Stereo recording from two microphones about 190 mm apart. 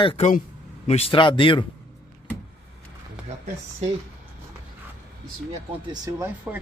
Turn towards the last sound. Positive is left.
turn(degrees=-20)  # may be behind; listen again after turning